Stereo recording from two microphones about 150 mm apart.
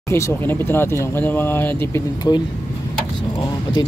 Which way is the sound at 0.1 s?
15° left (ahead or behind).